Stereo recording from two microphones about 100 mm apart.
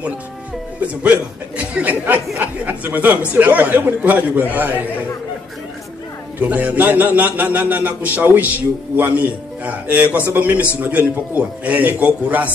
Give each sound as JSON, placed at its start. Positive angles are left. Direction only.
{"t": 1.6, "sound": "a man's voice", "side_deg": -15}
{"t": 6.4, "sound": "a man's voice", "side_deg": -15}